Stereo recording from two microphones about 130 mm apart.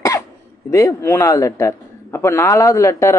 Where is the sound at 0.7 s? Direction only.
25° left (ahead or behind).